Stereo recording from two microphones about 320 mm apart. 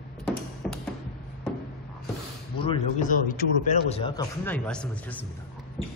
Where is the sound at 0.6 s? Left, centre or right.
Centre.